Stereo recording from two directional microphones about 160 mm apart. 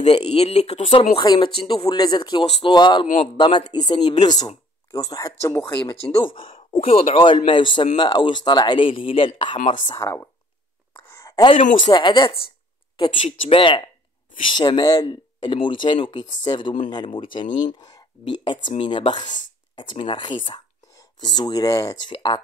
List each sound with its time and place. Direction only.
0.0 s a man's voice: 40° left (ahead or behind)
1.1 s speech: 30° left (ahead or behind)
6.1 s a man's voice: 30° left (ahead or behind)
9.8 s speech: 20° left (ahead or behind)
11.1 s a sound: 20° left (ahead or behind)
11.8 s a man's voice: 30° left (ahead or behind)
17.5 s speech: 55° left (ahead or behind)
17.7 s a man's voice: 25° left (ahead or behind)